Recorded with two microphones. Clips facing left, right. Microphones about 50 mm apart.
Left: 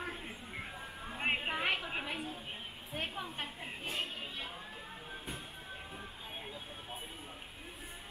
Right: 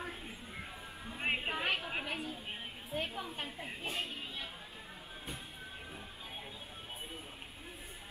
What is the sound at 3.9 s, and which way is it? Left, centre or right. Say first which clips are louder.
Music: left 1 dB; left.